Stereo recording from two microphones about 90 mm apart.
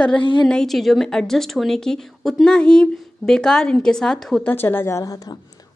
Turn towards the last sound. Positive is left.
turn(degrees=45)  # may be behind; listen again after turning